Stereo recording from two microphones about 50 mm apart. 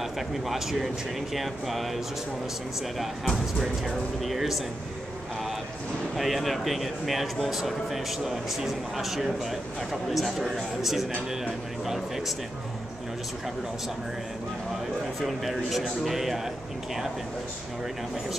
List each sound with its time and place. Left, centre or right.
0.0 s speech: centre
3.0 s speech: centre
6.1 s speech: centre
14.7 s a man's voice: centre